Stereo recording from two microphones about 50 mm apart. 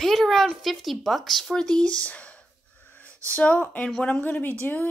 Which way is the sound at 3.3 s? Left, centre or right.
Left.